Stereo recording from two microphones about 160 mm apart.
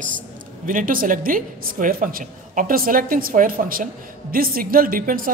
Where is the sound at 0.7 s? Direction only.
60° right (ahead or behind).